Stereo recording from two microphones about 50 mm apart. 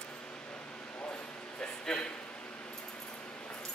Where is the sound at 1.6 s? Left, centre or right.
Centre.